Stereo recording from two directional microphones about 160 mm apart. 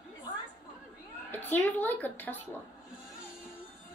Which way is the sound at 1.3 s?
10° left (ahead or behind).